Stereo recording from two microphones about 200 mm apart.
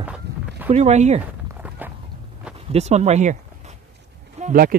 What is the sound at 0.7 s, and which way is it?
Speech, 35° right (ahead or behind).